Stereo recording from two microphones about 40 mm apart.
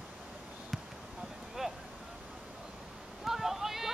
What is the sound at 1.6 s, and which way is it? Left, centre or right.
Vehicle, centre.